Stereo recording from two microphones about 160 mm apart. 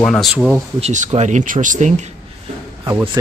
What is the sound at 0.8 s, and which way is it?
Speech, 45° right (ahead or behind).